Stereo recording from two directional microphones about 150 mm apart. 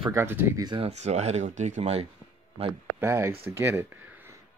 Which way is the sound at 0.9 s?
50° right (ahead or behind).